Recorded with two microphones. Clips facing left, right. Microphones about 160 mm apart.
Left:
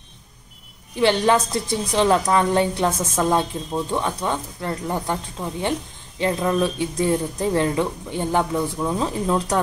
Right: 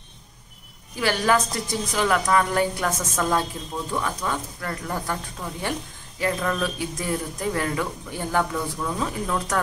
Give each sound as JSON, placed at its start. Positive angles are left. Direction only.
{"t": 0.9, "sound": "a woman's voice", "side_deg": 25}